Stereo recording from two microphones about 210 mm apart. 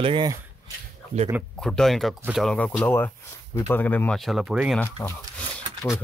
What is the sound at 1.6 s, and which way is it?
Speech, 5° left (ahead or behind).